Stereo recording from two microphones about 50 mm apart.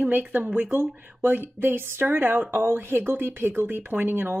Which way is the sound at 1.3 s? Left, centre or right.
Right.